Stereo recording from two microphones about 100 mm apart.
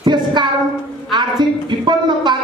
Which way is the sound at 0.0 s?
50° right (ahead or behind).